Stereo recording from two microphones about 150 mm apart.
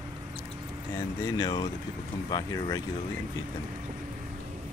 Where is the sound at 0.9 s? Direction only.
25° left (ahead or behind).